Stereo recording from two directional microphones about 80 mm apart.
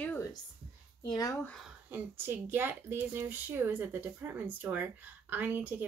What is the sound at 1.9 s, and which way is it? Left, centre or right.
Speech, right.